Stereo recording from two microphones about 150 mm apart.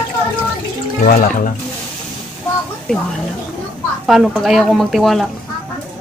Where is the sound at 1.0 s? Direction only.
70° left (ahead or behind).